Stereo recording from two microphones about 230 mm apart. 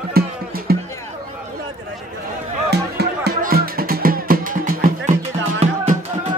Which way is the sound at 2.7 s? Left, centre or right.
Right.